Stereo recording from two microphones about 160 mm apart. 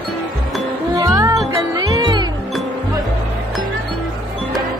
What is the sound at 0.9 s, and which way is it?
Music, 25° right (ahead or behind).